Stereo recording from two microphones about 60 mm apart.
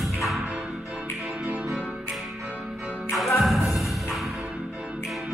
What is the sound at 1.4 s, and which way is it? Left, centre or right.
Music, centre.